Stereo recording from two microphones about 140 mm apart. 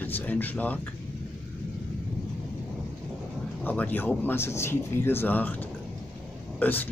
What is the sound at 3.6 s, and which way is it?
Speech, 10° left (ahead or behind).